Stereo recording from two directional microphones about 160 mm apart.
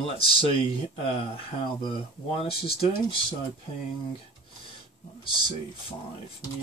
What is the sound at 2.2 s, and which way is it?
Speech, 35° left (ahead or behind).